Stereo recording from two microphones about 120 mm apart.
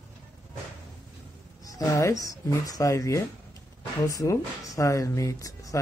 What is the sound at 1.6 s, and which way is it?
Speech, 30° left (ahead or behind).